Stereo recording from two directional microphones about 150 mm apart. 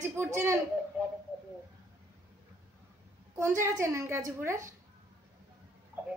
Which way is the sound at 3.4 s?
15° right (ahead or behind).